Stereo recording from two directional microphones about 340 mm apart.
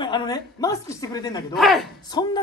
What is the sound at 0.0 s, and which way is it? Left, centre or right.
Speech, centre.